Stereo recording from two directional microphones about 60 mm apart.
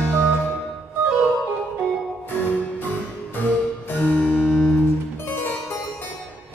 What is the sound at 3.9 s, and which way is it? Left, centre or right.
Harpsichord, left.